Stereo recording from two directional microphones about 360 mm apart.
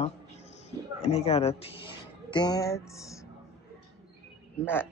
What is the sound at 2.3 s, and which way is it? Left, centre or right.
Music, centre.